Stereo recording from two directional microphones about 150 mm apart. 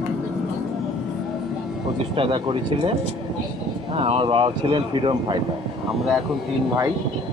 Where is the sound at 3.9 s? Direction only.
40° right (ahead or behind).